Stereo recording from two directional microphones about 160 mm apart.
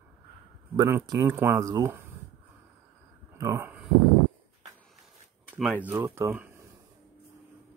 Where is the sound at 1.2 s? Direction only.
15° right (ahead or behind).